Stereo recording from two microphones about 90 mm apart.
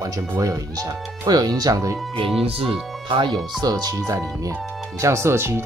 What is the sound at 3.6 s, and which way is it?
Speech, 45° right (ahead or behind).